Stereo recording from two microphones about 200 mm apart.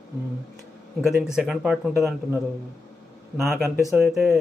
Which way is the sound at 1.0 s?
5° right (ahead or behind).